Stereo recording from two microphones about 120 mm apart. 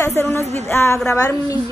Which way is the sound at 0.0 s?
25° left (ahead or behind).